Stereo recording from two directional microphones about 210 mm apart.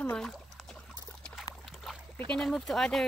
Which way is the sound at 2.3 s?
5° left (ahead or behind).